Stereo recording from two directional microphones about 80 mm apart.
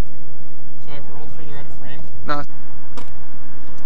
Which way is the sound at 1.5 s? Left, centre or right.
Left.